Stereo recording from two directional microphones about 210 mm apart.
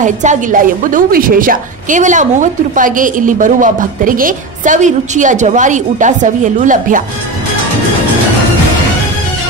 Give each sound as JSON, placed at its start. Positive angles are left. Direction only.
{"t": 0.0, "sound": "a woman's voice", "side_deg": -35}